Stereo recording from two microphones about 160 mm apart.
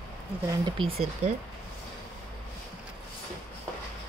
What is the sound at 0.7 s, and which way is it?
Speech, 35° right (ahead or behind).